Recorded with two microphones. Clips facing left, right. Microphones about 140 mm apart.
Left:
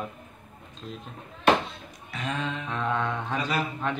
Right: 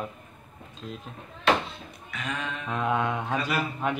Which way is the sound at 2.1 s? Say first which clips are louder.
Left 3 dB; 30° left (ahead or behind).